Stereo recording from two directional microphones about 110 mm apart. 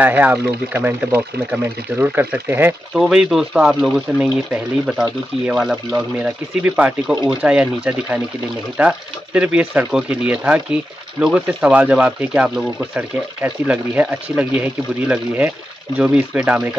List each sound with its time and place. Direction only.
0.0 s speech: 15° right (ahead or behind)
2.9 s speech: 5° right (ahead or behind)